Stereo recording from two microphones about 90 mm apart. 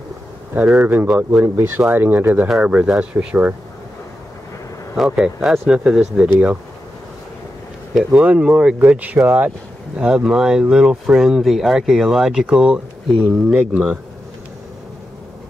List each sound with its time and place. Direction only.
0.8 s speech: 20° right (ahead or behind)
2.4 s speech: 10° right (ahead or behind)
4.9 s speech: 5° right (ahead or behind)
7.9 s speech: 10° right (ahead or behind)